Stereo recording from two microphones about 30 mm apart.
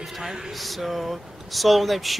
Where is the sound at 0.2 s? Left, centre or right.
Right.